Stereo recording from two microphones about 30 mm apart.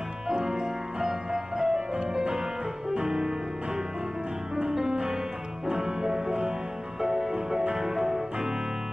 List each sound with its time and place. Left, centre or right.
0.3 s music: right
1.0 s music: right
4.8 s music: right
7.1 s music: right